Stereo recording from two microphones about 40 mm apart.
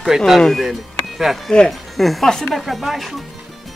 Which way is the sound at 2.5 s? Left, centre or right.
Centre.